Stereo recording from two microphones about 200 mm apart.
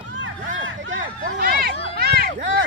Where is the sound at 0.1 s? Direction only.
70° right (ahead or behind).